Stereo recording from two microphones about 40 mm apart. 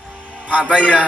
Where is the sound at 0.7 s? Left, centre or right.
Right.